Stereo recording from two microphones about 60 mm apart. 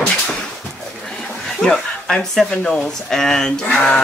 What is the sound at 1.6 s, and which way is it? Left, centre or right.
Speech, centre.